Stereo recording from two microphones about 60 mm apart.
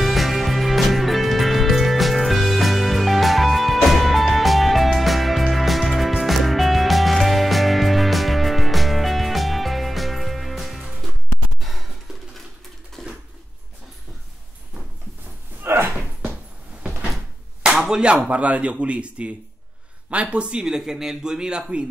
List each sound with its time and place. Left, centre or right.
0.0 s music: centre
11.6 s a sound: centre
13.0 s a sound: centre
15.6 s slam: right
17.6 s clapping: centre
18.3 s speech: right